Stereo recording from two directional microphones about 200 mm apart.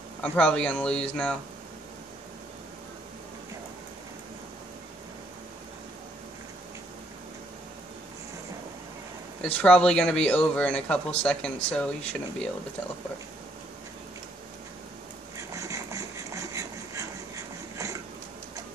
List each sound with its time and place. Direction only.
0.2 s a man's voice: 5° left (ahead or behind)
9.4 s a man's voice: 5° left (ahead or behind)
15.3 s a sound: 15° right (ahead or behind)